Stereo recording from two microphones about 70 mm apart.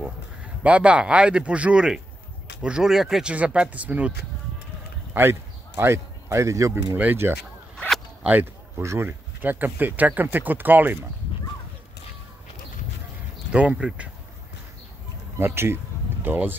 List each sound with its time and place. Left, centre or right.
0.0 s a man's voice: centre
5.1 s speech: right
7.2 s speech: right
8.8 s speech: right
9.4 s speech: right
13.5 s speech: centre
15.3 s speech: right